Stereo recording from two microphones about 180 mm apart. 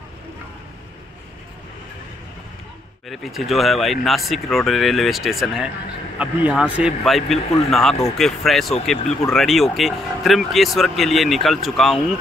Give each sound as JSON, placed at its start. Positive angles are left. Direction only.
{"t": 3.1, "sound": "speech", "side_deg": 0}